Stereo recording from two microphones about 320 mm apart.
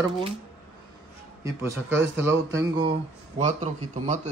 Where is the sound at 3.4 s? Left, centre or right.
Right.